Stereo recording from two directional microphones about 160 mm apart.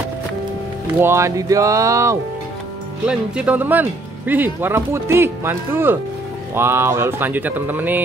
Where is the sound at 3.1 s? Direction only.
5° right (ahead or behind).